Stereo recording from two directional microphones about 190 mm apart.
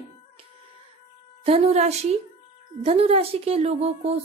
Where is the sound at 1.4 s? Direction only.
35° right (ahead or behind).